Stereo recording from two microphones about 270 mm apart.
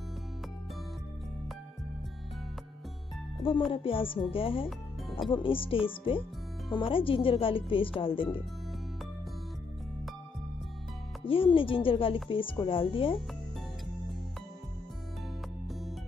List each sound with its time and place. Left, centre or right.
3.7 s speech: centre
11.2 s speech: centre